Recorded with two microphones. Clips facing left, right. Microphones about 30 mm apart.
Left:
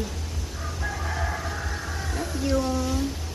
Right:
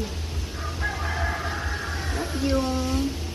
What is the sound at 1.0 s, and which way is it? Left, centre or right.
Music, centre.